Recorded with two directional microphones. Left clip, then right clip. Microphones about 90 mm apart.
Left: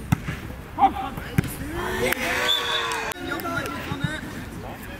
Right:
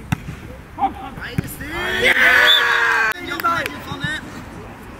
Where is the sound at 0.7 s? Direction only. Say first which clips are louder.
Left 2 dB; 10° left (ahead or behind).